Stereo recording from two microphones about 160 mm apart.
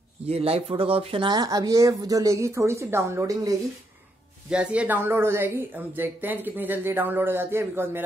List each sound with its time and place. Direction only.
0.3 s speech: 40° right (ahead or behind); by 3.5 s 20° right (ahead or behind)
4.5 s speech: 5° right (ahead or behind)